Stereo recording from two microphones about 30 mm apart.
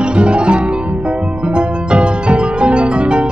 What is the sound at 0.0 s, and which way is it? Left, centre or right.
Music, right.